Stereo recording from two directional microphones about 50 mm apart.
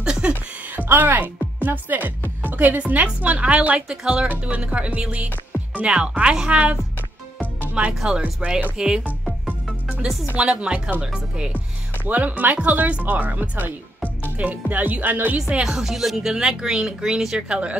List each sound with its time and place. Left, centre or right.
0.0 s a sound: centre
0.7 s speech: right; by 9.1 s centre
9.7 s music: centre
10.3 s speech: centre
12.0 s speech: right
15.6 s speech: centre